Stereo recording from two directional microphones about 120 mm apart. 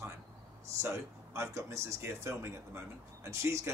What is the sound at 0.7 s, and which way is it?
Speech, 25° right (ahead or behind).